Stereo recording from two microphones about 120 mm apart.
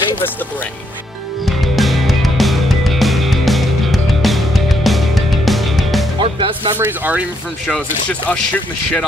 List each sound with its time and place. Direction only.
1.4 s music: centre (ahead or behind)
6.2 s music: 50° right (ahead or behind)
6.7 s speech: 15° right (ahead or behind)
7.6 s speech: 10° left (ahead or behind)